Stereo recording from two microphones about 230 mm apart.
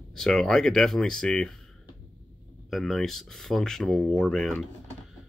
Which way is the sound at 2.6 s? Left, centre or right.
Centre.